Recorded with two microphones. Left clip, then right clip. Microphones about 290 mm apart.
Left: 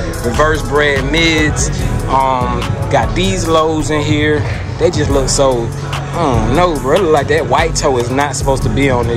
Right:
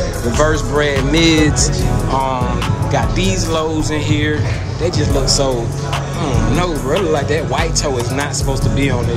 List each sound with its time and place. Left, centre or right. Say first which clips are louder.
0.4 s speech: left 3 dB; centre